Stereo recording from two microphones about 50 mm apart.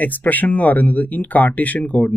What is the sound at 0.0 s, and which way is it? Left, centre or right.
Speech, left.